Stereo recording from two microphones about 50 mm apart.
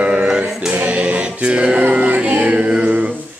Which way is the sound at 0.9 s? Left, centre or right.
Right.